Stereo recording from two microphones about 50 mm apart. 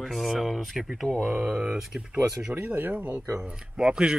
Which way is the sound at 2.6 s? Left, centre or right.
Right.